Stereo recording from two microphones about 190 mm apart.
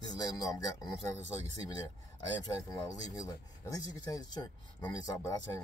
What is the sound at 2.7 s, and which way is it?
Speech, 20° left (ahead or behind).